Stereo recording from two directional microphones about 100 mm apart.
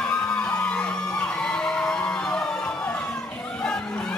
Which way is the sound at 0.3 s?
15° left (ahead or behind).